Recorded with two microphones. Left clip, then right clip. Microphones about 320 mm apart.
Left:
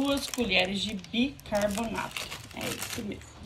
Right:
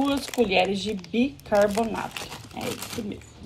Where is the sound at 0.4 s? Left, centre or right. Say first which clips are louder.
Right 6 dB; centre.